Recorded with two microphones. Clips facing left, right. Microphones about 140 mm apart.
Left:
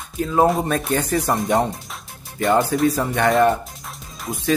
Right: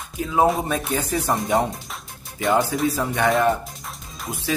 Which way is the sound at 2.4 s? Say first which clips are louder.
Left 3 dB; centre (ahead or behind).